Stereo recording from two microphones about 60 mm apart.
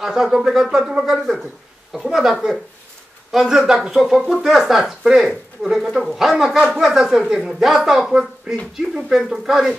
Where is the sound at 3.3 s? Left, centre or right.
Centre.